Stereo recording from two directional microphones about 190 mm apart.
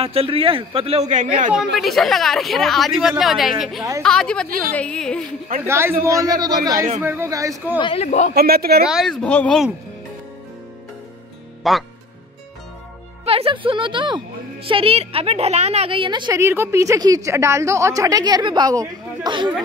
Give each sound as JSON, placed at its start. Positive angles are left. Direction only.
{"t": 0.0, "sound": "a man's voice", "side_deg": -30}
{"t": 1.8, "sound": "a woman's voice", "side_deg": 0}
{"t": 5.7, "sound": "a man's voice", "side_deg": -15}
{"t": 7.8, "sound": "a man's voice", "side_deg": 30}
{"t": 8.4, "sound": "speech", "side_deg": -55}
{"t": 8.8, "sound": "a woman's voice", "side_deg": 0}
{"t": 11.6, "sound": "a woman's voice", "side_deg": 0}
{"t": 13.2, "sound": "a woman's voice", "side_deg": -30}